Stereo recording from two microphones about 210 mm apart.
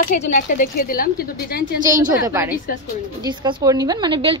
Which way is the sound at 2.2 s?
15° right (ahead or behind).